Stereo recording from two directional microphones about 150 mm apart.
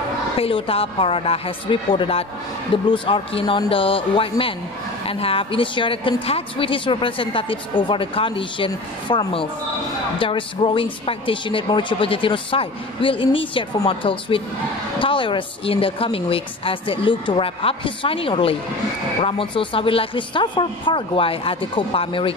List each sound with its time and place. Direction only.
0.4 s a woman's voice: 40° left (ahead or behind)